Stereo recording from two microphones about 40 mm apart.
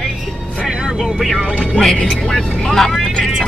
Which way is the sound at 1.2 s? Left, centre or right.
Centre.